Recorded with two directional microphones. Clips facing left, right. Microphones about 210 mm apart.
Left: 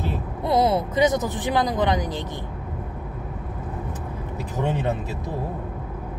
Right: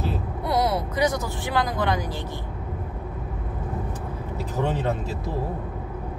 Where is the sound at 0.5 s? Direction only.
25° left (ahead or behind).